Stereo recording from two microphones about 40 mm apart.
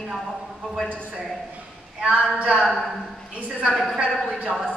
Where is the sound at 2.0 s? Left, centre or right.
Right.